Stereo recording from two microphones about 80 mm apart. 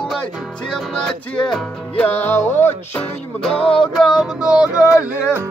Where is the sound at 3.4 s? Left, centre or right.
Centre.